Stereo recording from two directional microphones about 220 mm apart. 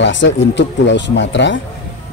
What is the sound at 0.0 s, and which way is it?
Speech, 55° left (ahead or behind).